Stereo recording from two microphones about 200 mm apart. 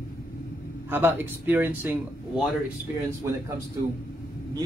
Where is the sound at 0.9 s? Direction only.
10° right (ahead or behind).